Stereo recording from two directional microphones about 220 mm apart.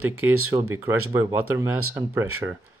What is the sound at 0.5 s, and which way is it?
Speech, 20° right (ahead or behind).